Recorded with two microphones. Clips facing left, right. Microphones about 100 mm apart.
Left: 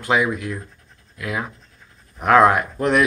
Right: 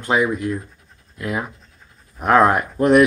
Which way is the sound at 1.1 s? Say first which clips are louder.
Right 2 dB; 35° right (ahead or behind).